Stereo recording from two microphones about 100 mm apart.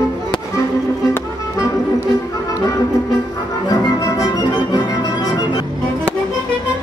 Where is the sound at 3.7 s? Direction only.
35° left (ahead or behind).